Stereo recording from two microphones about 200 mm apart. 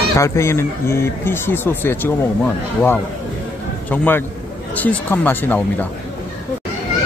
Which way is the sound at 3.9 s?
10° left (ahead or behind).